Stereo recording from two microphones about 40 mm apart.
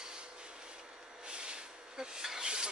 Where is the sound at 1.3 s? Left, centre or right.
Right.